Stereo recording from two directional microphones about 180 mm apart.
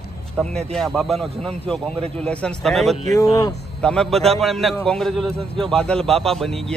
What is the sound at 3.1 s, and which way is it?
Speech, 20° left (ahead or behind).